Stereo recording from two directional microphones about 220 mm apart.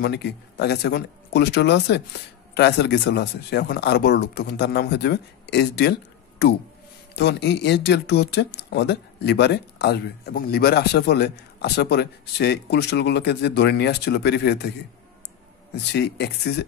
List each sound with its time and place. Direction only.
0.0 s speech: 50° left (ahead or behind)
7.2 s speech: 50° left (ahead or behind)
15.7 s speech: 50° left (ahead or behind)